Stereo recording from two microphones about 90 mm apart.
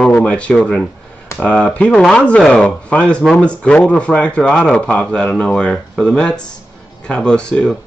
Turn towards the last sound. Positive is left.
turn(degrees=10)  # may be behind; listen again after turning